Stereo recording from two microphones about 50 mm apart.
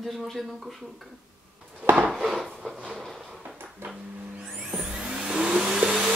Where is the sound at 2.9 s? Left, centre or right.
Centre.